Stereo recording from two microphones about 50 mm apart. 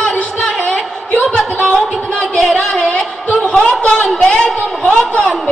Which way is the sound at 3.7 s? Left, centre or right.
Left.